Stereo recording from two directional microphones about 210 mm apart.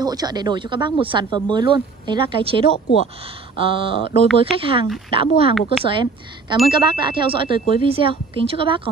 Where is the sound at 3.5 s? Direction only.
25° right (ahead or behind).